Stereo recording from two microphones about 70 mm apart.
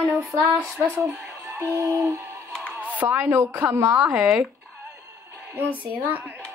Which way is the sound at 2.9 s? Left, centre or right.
Right.